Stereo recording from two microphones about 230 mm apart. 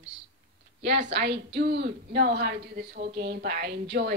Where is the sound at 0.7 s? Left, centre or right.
Right.